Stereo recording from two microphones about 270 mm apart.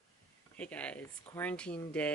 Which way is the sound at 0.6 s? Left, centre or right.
Centre.